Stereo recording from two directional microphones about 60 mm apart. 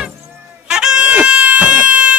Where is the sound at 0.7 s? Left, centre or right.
Centre.